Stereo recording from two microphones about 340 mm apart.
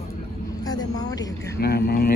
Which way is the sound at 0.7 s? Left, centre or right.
Centre.